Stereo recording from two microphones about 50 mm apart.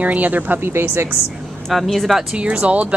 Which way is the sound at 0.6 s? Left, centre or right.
Right.